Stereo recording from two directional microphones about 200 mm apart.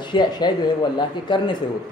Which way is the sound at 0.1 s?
20° left (ahead or behind).